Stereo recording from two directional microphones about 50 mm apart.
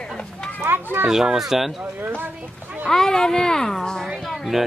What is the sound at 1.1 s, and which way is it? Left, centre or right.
Speech, centre.